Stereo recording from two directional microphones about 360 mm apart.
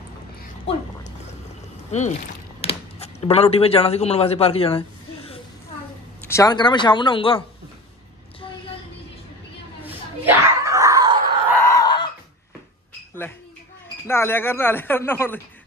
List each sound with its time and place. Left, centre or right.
0.7 s speech: centre
1.9 s speech: centre
9.8 s a sound: centre
11.6 s screaming: centre
14.0 s speech: centre